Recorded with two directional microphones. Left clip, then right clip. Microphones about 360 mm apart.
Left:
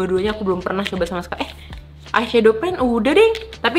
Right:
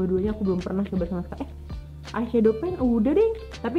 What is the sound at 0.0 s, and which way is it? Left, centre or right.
A woman's voice, centre.